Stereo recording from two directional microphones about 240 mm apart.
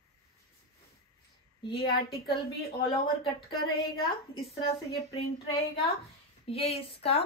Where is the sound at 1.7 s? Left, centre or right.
Left.